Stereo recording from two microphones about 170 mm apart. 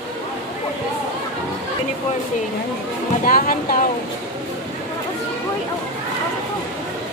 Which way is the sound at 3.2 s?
55° left (ahead or behind).